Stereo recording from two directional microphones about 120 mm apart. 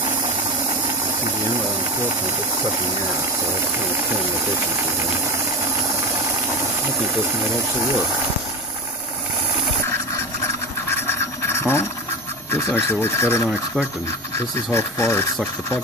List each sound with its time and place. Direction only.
10.9 s scratch: 20° left (ahead or behind)
12.4 s speech: 20° left (ahead or behind)